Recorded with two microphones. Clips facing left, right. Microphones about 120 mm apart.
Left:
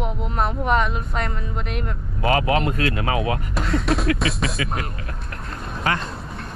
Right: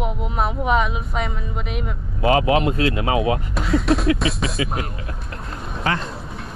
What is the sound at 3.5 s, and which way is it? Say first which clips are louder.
Speech: right 2 dB; centre (ahead or behind).